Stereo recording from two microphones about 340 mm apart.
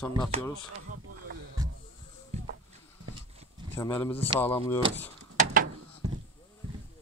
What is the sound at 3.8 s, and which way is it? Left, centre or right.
Speech, centre.